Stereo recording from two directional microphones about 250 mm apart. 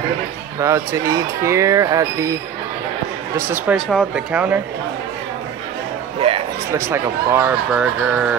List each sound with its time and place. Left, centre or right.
0.6 s speech: centre
3.3 s speech: centre
6.2 s a sound: right
6.9 s speech: centre